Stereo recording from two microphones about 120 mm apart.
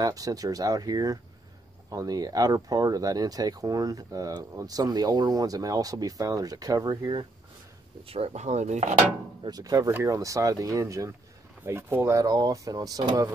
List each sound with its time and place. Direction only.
0.0 s speech: 30° right (ahead or behind)
8.1 s speech: 65° right (ahead or behind)
9.4 s speech: 30° right (ahead or behind)